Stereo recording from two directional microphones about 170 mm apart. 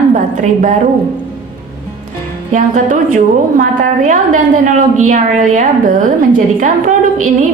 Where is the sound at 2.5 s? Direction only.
50° right (ahead or behind).